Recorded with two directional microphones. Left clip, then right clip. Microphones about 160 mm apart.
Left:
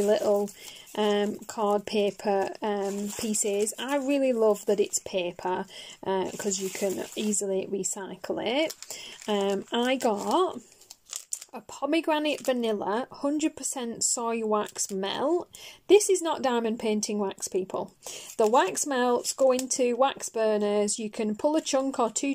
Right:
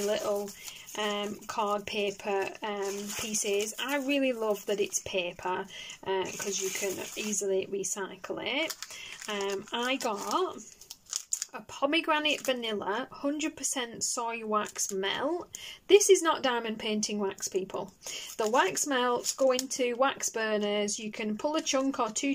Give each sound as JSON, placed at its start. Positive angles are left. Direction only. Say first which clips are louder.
{"t": 0.1, "sound": "a woman's voice", "louder": "left 7 dB", "side_deg": 30}